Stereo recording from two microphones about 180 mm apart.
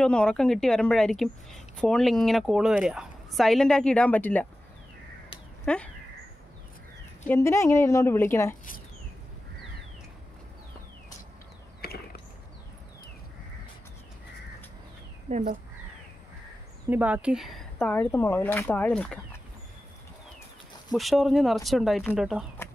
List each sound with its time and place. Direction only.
0.0 s a woman's voice: 5° left (ahead or behind)
5.7 s a woman's voice: 5° left (ahead or behind)
7.2 s speech: 15° left (ahead or behind)
11.8 s a sound: 60° left (ahead or behind)
15.2 s speech: 40° right (ahead or behind)
16.9 s speech: 10° right (ahead or behind)
20.9 s a woman's voice: centre (ahead or behind)